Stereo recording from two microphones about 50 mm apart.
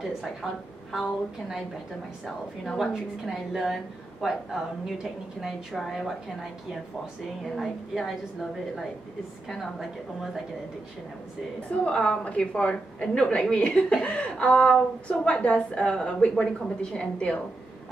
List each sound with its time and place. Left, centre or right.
2.2 s a woman's voice: centre
7.5 s a woman's voice: centre
11.7 s a woman's voice: left